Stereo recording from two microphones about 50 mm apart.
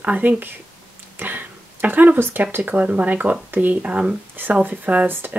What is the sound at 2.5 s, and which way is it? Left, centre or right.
Speech, right.